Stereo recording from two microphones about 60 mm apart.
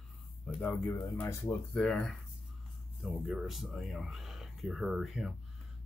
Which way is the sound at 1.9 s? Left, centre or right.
Centre.